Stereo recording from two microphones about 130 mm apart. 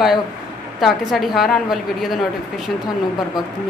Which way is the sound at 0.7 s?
Centre (ahead or behind).